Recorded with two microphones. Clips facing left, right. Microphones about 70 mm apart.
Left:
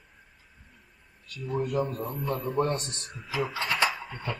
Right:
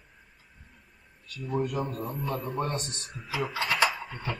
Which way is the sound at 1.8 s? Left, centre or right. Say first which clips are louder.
Left 2 dB; centre.